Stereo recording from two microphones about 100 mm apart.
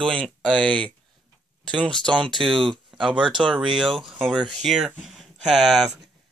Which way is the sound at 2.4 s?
55° right (ahead or behind).